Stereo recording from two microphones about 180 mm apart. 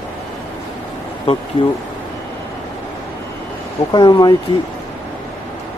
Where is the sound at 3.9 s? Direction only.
25° left (ahead or behind).